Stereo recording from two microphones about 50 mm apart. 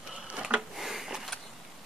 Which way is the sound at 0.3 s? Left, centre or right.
Right.